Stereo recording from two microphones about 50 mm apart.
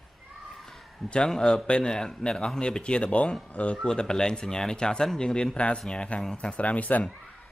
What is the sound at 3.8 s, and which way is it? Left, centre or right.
A man's voice, centre.